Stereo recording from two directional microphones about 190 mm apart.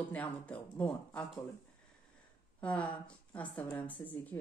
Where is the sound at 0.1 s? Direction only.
5° left (ahead or behind).